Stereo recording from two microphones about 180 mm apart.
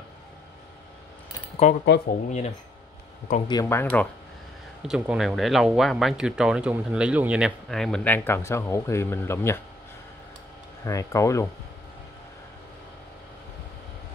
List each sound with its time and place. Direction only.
1.6 s speech: 40° left (ahead or behind)
3.4 s speech: 20° left (ahead or behind)
4.8 s speech: 5° right (ahead or behind); by 9.6 s 15° left (ahead or behind)
10.8 s speech: 15° left (ahead or behind)